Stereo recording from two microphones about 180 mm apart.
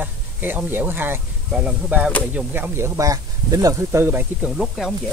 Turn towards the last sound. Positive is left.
turn(degrees=0)  # may be behind; listen again after turning